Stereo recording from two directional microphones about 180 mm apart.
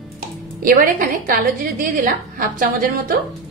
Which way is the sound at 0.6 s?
50° right (ahead or behind).